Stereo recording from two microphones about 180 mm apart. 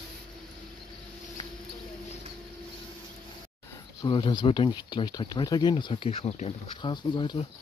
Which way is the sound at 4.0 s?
30° left (ahead or behind).